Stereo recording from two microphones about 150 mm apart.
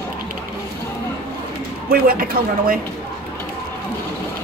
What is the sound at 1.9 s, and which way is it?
Speech, 80° right.